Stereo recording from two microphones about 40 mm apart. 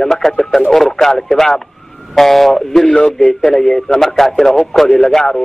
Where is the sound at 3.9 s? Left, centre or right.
Centre.